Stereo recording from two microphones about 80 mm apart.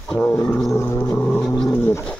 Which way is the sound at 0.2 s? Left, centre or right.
Left.